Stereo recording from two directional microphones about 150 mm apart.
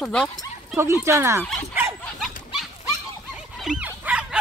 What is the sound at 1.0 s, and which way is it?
Speech, 20° right (ahead or behind).